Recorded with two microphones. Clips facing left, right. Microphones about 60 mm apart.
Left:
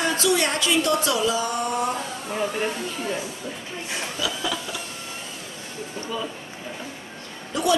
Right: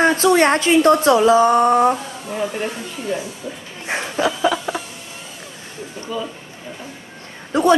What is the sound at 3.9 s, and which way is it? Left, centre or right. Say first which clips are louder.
Speech: right 8 dB; right.